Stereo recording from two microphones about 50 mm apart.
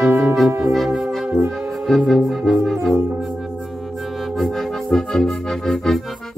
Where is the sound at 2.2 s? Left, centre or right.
Centre.